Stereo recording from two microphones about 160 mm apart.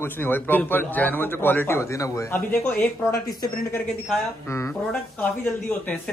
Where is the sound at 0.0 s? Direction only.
15° left (ahead or behind).